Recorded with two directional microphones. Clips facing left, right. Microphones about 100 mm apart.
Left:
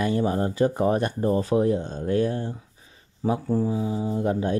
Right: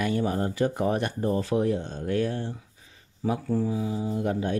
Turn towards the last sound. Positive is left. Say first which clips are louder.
# left 3 dB
turn(degrees=30)  # may be behind; listen again after turning